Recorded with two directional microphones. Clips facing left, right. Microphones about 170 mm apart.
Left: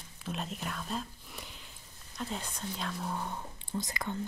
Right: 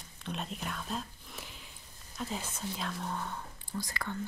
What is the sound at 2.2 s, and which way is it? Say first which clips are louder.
Speech: even; centre (ahead or behind).